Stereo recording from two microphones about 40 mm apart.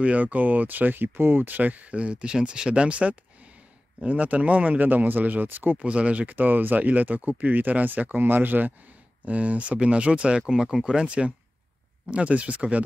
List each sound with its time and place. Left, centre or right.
0.0 s speech: right
1.6 s speech: right
5.8 s speech: right
6.3 s speech: right
9.2 s speech: right
10.5 s speech: centre
11.0 s speech: right